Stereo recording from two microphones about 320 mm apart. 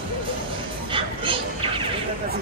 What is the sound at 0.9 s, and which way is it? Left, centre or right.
Music, centre.